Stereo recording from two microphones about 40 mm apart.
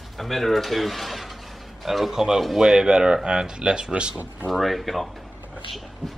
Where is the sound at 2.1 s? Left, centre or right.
Centre.